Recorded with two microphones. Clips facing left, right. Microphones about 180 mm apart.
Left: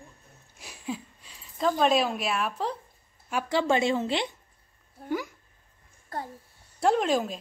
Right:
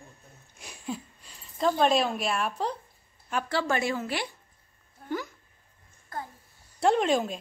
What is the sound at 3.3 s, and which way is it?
A woman's voice, 15° left (ahead or behind).